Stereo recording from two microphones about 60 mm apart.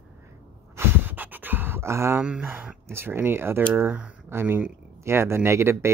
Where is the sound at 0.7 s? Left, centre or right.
Right.